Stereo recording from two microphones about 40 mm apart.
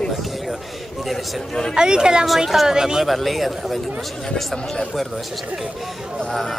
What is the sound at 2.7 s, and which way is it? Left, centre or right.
Speech, centre.